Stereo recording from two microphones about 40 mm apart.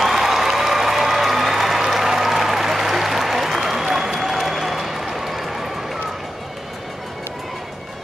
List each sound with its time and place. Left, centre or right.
0.0 s applause: centre